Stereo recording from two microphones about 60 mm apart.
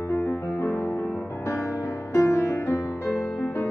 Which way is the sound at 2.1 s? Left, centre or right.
Left.